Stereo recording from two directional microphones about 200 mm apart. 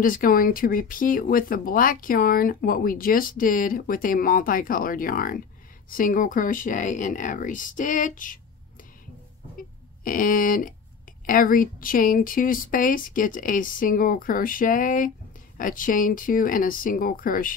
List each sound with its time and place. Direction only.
0.0 s speech: 45° left (ahead or behind)
9.6 s speech: 45° left (ahead or behind)